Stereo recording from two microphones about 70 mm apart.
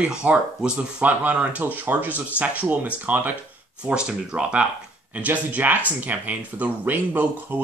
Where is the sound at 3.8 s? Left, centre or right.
Centre.